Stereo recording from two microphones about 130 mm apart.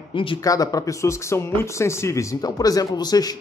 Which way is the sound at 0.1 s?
40° left (ahead or behind).